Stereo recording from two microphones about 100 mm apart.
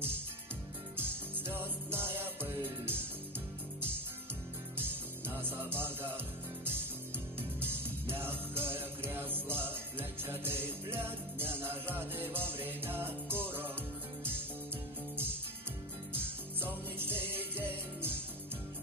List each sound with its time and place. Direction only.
0.9 s music: 20° right (ahead or behind)
5.3 s music: 20° right (ahead or behind)
16.1 s music: 20° right (ahead or behind)